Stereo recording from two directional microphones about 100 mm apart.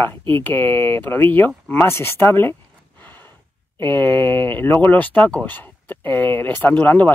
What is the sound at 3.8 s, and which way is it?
Speech, 20° left (ahead or behind).